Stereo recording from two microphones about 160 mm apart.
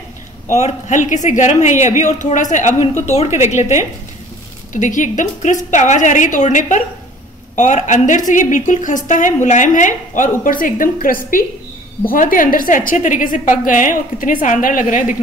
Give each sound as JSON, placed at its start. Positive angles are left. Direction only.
{"t": 0.5, "sound": "a woman's voice", "side_deg": 45}